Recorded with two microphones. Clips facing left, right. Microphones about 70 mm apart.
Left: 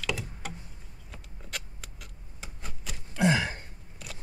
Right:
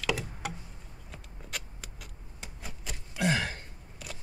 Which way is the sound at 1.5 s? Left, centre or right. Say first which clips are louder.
Left 1 dB; centre.